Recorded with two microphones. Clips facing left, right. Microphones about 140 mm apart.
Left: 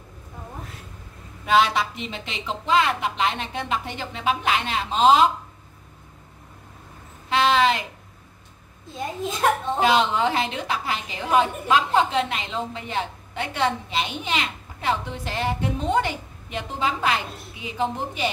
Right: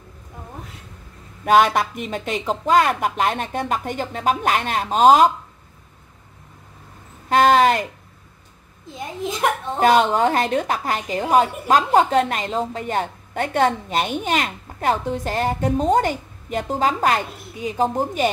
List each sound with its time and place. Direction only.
1.4 s a woman's voice: 50° right (ahead or behind)
7.2 s a woman's voice: 45° right (ahead or behind)
9.8 s a woman's voice: 50° right (ahead or behind)